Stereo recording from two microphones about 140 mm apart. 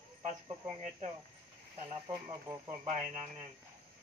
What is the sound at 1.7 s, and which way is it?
Speech, 40° right (ahead or behind).